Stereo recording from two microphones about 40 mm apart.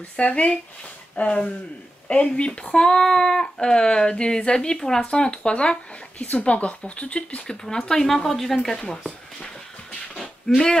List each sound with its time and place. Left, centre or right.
0.2 s speech: left
2.7 s speech: centre
6.1 s speech: left
7.6 s speech: centre
8.1 s speech: centre
8.7 s speech: centre
10.5 s speech: centre